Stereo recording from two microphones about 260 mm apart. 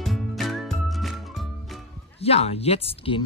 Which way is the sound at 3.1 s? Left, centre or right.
Centre.